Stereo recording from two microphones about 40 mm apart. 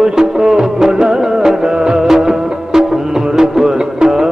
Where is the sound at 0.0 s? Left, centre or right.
Centre.